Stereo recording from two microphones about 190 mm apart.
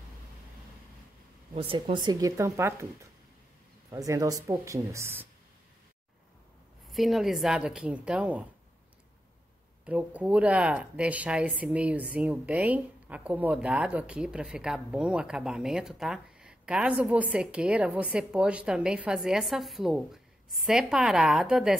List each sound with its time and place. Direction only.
1.5 s speech: 30° right (ahead or behind); by 5.3 s 10° right (ahead or behind)
6.9 s a woman's voice: centre (ahead or behind)
9.8 s a woman's voice: 5° right (ahead or behind)